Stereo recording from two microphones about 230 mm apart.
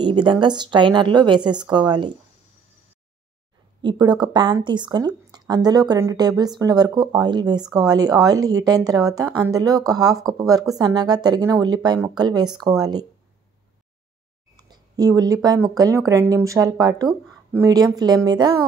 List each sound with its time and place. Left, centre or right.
0.0 s a woman's voice: centre
3.8 s speech: centre
14.6 s speech: centre